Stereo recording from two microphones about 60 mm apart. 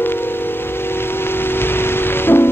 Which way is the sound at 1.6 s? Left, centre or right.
Left.